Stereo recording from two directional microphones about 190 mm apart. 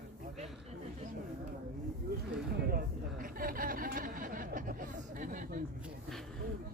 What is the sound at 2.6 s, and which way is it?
Chatter, 50° right (ahead or behind).